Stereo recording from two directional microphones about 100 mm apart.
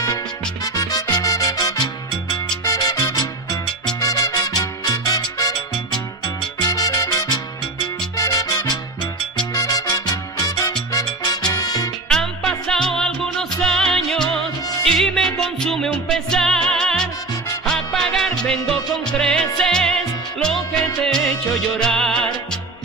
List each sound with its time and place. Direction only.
1.1 s salsa music: 40° left (ahead or behind)
4.0 s music: 40° left (ahead or behind)
6.2 s salsa music: 40° left (ahead or behind)
8.2 s music: 35° left (ahead or behind)
9.5 s salsa music: 40° left (ahead or behind)
12.1 s music: 5° left (ahead or behind)